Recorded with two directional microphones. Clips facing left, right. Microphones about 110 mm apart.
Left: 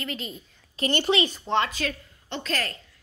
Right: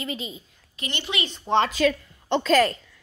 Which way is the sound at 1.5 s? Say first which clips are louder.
Right 5 dB; 10° right (ahead or behind).